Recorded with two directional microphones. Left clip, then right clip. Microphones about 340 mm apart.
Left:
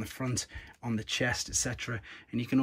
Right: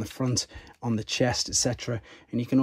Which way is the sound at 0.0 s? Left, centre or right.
Centre.